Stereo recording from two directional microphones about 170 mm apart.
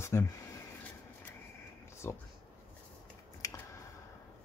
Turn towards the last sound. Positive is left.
turn(degrees=20)  # may be behind; listen again after turning